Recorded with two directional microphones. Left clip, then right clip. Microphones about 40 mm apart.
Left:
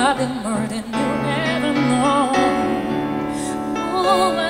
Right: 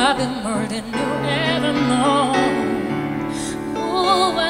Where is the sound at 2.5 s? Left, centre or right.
Right.